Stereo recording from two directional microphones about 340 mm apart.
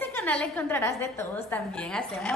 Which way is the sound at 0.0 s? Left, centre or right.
Centre.